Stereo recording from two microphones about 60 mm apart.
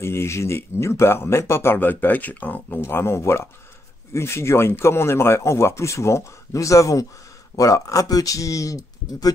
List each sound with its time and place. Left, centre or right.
0.0 s speech: left
2.8 s speech: left